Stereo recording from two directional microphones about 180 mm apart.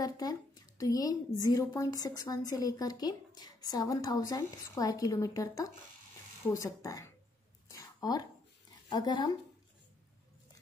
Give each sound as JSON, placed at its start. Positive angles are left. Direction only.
{"t": 0.0, "sound": "a woman's voice", "side_deg": 20}
{"t": 7.7, "sound": "a sound", "side_deg": 20}
{"t": 8.8, "sound": "speech", "side_deg": 25}